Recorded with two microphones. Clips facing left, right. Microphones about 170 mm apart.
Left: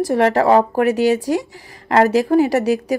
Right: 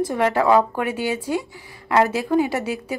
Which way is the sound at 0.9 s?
80° left.